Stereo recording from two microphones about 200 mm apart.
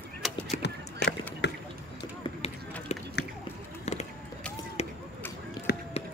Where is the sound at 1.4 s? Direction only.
60° left (ahead or behind).